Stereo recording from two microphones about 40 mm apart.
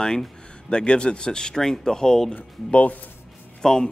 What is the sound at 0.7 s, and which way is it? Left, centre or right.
Speech, left.